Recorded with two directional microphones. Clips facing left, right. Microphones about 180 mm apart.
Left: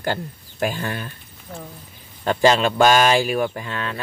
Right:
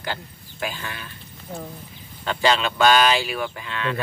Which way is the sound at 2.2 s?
45° left (ahead or behind).